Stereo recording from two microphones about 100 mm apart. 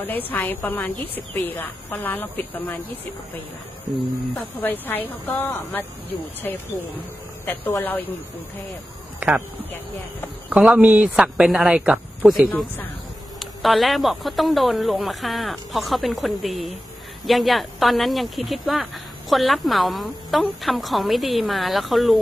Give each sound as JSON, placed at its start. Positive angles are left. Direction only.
{"t": 0.0, "sound": "speech", "side_deg": 20}
{"t": 4.6, "sound": "speech", "side_deg": 20}
{"t": 10.5, "sound": "speech", "side_deg": -10}
{"t": 12.4, "sound": "speech", "side_deg": 15}
{"t": 13.4, "sound": "speech", "side_deg": 0}